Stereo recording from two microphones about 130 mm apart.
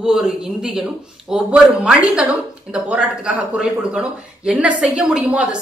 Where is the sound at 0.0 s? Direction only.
5° right (ahead or behind).